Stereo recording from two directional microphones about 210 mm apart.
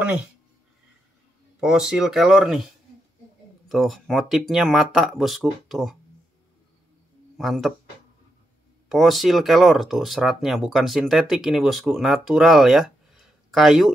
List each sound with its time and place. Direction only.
1.6 s speech: centre (ahead or behind)
7.3 s speech: centre (ahead or behind)
8.8 s speech: centre (ahead or behind)